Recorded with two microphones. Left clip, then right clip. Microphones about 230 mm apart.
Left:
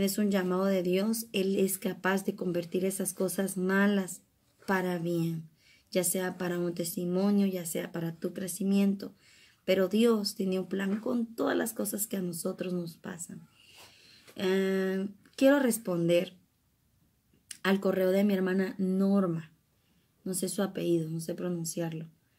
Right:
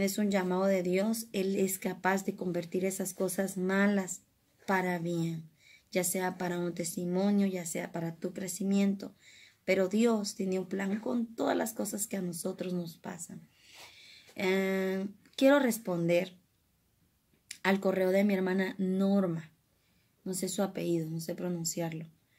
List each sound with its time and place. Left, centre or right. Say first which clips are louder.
0.0 s speech: left 1 dB; centre
14.4 s speech: left 1 dB; centre
17.6 s speech: left 1 dB; centre
21.0 s speech: left 1 dB; centre
21.4 s speech: left 2 dB; centre